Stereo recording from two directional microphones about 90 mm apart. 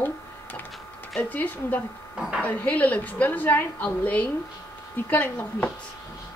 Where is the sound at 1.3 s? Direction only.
15° left (ahead or behind).